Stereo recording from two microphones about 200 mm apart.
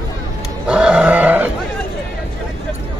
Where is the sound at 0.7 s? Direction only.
5° right (ahead or behind).